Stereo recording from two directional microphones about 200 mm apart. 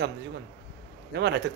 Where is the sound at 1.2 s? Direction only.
60° right (ahead or behind).